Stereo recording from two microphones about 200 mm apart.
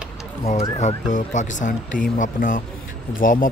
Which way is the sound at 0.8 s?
35° left (ahead or behind).